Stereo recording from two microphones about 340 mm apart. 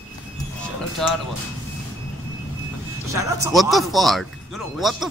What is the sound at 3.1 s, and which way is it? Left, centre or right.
Speech, centre.